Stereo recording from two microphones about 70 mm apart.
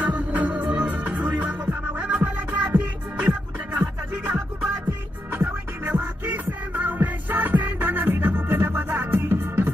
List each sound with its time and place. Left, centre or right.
0.0 s music: right